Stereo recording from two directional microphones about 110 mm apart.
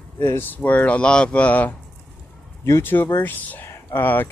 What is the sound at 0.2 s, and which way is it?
Speech, 20° left (ahead or behind).